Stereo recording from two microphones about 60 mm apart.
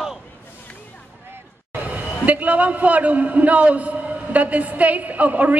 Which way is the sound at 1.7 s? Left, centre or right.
Right.